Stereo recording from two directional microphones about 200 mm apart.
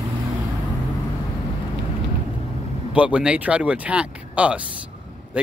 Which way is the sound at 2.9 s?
5° right (ahead or behind).